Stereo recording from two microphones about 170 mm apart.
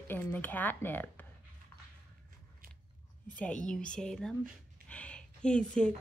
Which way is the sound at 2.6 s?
60° right (ahead or behind).